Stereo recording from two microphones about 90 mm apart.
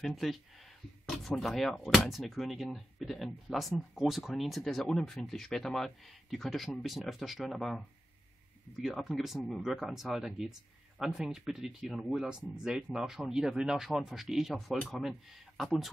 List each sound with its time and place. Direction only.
0.0 s speech: centre (ahead or behind)
8.8 s speech: centre (ahead or behind)